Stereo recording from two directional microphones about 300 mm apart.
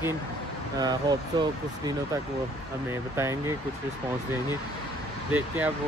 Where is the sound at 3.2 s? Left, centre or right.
Centre.